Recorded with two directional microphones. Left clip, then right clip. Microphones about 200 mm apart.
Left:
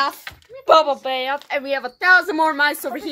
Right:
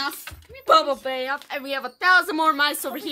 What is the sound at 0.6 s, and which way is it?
A woman's voice, 5° left (ahead or behind).